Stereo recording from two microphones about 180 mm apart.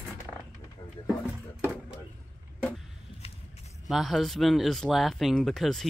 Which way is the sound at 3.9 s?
Centre (ahead or behind).